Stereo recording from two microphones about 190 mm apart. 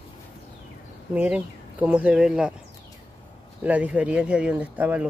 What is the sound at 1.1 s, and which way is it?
Speech, 5° right (ahead or behind).